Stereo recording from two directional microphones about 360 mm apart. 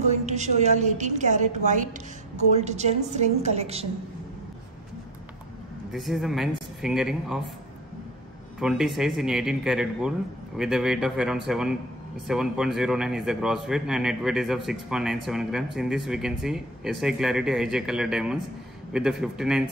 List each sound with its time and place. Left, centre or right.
0.0 s a woman's voice: centre
5.9 s a man's voice: centre
8.5 s a man's voice: centre